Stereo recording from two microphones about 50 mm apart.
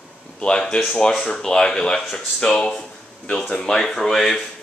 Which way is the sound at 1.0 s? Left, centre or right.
Centre.